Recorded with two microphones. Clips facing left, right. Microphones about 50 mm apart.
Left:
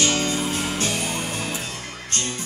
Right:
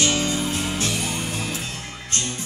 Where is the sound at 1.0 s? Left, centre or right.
Centre.